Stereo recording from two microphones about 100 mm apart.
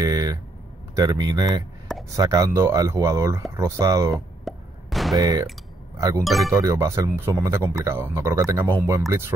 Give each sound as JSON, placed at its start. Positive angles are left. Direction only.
{"t": 0.0, "sound": "a sound", "side_deg": -40}
{"t": 0.9, "sound": "speech", "side_deg": -40}
{"t": 4.5, "sound": "plop", "side_deg": 0}
{"t": 5.1, "sound": "speech", "side_deg": -40}
{"t": 6.2, "sound": "speech", "side_deg": 0}
{"t": 6.5, "sound": "speech", "side_deg": -35}